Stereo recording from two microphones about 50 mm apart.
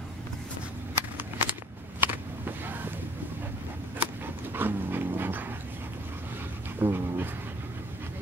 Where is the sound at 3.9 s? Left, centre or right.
Right.